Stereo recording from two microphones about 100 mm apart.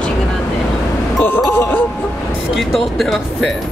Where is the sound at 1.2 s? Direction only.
20° left (ahead or behind).